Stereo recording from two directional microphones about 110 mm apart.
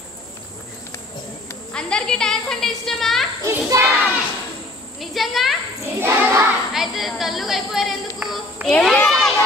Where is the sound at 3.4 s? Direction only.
25° right (ahead or behind).